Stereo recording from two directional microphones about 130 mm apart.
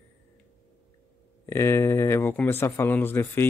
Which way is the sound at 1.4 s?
20° left (ahead or behind).